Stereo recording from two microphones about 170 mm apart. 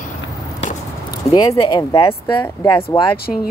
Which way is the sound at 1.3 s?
30° left (ahead or behind).